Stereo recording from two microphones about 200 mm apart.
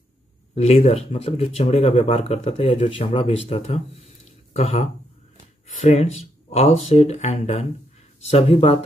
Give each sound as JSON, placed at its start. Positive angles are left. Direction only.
{"t": 0.6, "sound": "speech", "side_deg": 30}